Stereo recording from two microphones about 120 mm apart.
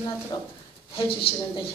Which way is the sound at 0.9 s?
45° left (ahead or behind).